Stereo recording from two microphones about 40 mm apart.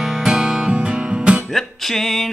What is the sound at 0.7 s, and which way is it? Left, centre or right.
Music, right.